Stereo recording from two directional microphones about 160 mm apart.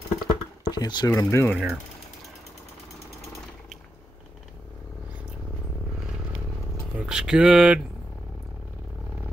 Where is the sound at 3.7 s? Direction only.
5° left (ahead or behind).